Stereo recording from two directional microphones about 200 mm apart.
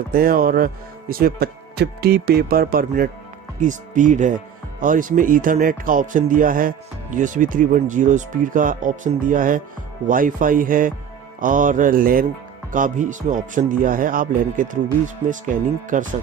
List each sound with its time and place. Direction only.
0.1 s speech: 45° right (ahead or behind)